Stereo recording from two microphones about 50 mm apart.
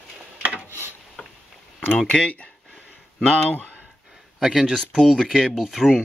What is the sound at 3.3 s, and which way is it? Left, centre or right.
Speech, left.